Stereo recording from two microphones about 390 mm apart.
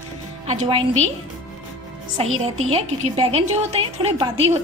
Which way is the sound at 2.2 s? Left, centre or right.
Centre.